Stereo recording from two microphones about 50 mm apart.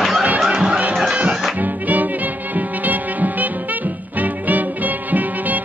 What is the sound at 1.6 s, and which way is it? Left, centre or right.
Music, right.